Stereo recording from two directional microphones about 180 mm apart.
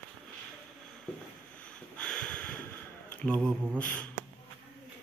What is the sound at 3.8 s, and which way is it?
Speech, 10° left (ahead or behind).